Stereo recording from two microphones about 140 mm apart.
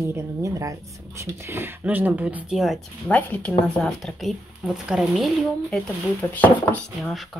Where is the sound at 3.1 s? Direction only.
10° left (ahead or behind).